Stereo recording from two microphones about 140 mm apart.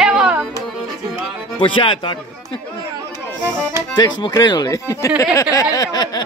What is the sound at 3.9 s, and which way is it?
Speech, 30° left (ahead or behind).